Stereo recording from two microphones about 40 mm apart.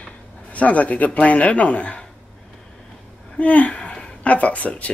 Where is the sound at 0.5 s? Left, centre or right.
Left.